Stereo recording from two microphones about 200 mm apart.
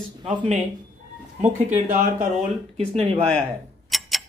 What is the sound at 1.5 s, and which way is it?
Speech, 35° right (ahead or behind).